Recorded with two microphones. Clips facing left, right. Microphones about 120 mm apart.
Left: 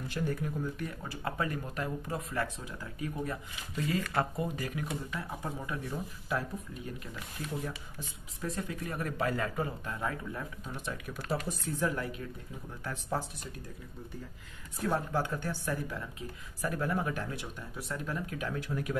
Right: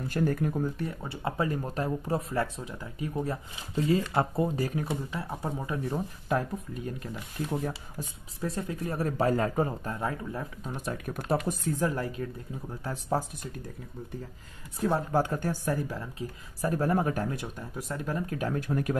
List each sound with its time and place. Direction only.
0.1 s speech: 50° right (ahead or behind)
0.7 s speech: 25° right (ahead or behind)
6.2 s speech: 45° right (ahead or behind)
14.8 s speech: 25° right (ahead or behind)
15.1 s speech: 45° right (ahead or behind)